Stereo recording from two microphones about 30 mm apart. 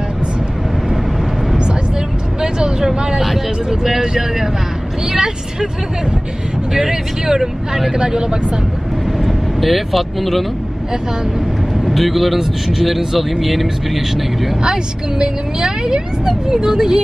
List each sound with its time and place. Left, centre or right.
2.4 s vehicle: right
4.0 s a woman's voice: right
6.7 s a woman's voice: centre
9.2 s speech: centre
11.8 s speech: centre
14.6 s a woman's voice: right